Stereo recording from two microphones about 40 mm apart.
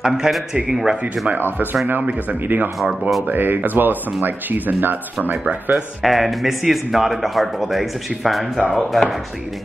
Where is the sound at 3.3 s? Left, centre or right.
Right.